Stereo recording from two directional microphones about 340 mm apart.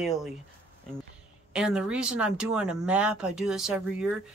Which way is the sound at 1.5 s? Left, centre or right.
Centre.